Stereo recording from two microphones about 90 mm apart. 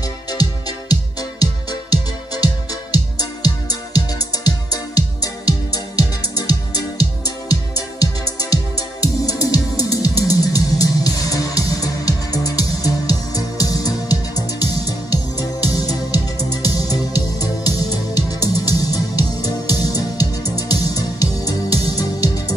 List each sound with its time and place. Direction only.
0.3 s music: 45° left (ahead or behind)